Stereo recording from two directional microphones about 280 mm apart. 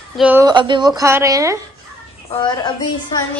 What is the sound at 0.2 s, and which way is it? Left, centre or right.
Speech, centre.